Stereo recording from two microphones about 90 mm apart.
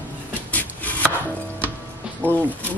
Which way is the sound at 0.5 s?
20° left (ahead or behind).